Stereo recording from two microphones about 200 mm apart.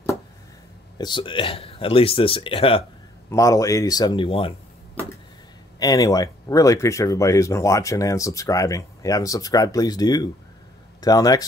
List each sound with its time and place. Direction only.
0.9 s speech: 20° left (ahead or behind)
3.3 s speech: 15° left (ahead or behind)
5.8 s speech: 20° left (ahead or behind)